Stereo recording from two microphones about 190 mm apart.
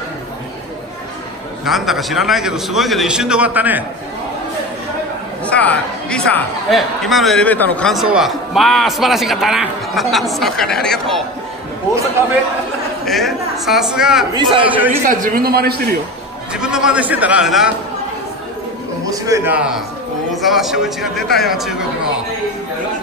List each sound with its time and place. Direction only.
1.6 s speech: centre (ahead or behind)
5.4 s speech: 5° left (ahead or behind)
13.0 s speech: centre (ahead or behind)
14.3 s a man's voice: 25° right (ahead or behind)
14.9 s a man's voice: 45° right (ahead or behind)
16.5 s speech: 5° right (ahead or behind)
19.0 s a man's voice: 15° right (ahead or behind)